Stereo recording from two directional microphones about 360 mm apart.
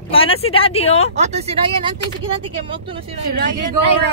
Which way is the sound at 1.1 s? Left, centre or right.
Centre.